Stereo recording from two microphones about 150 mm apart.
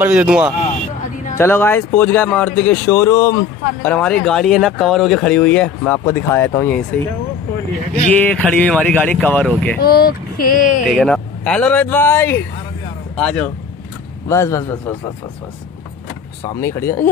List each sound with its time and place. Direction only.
0.0 s speech: 10° right (ahead or behind)
1.3 s speech: 15° left (ahead or behind)
3.8 s speech: 10° left (ahead or behind)
8.1 s speech: 5° left (ahead or behind)
9.8 s speech: 85° left; by 10.8 s 65° left (ahead or behind)
10.9 s speech: 5° left (ahead or behind)
14.3 s a man's voice: 20° left (ahead or behind)
16.4 s speech: 20° left (ahead or behind)